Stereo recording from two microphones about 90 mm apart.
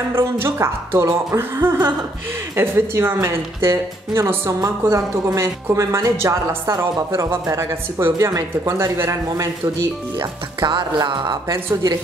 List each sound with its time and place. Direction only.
0.1 s a woman's voice: 30° right (ahead or behind)
10.6 s music: 55° right (ahead or behind)
11.5 s a woman's voice: 40° right (ahead or behind)